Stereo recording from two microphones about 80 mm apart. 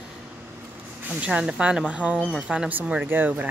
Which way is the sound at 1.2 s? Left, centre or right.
Centre.